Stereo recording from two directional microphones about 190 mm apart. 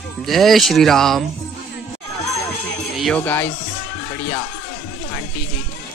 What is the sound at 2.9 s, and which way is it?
Speech, 5° left (ahead or behind).